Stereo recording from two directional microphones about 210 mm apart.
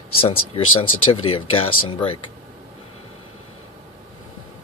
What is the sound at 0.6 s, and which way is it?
Speech, 80° left.